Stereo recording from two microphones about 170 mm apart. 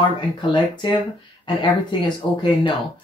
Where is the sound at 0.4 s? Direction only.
30° left (ahead or behind).